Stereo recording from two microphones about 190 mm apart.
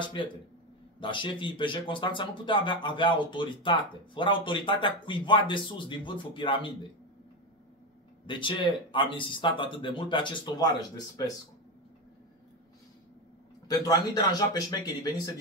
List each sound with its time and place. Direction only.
0.0 s speech: 25° left (ahead or behind)
8.3 s speech: 25° left (ahead or behind)
13.7 s speech: 20° left (ahead or behind)